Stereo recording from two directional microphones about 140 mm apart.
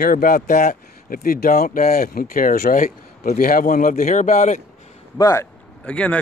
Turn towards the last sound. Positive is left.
turn(degrees=10)  # may be behind; listen again after turning